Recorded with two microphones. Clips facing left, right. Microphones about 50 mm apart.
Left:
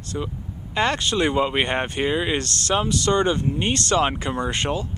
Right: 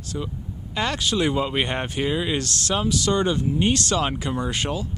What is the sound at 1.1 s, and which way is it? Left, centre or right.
Speech, centre.